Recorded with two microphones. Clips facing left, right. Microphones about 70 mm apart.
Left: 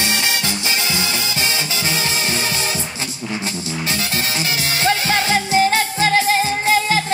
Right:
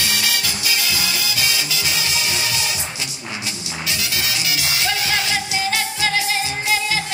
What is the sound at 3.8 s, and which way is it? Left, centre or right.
Music, left.